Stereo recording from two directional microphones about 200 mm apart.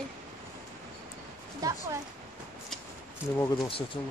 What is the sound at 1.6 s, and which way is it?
Speech, 15° right (ahead or behind).